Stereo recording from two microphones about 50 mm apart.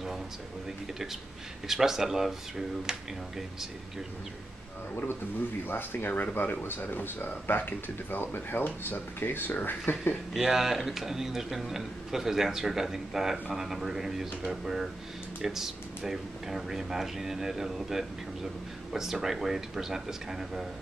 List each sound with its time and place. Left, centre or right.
1.7 s a man's voice: centre
5.7 s speech: left
10.3 s a man's voice: centre